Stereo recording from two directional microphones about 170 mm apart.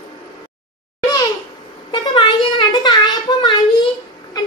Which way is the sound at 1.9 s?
30° left (ahead or behind).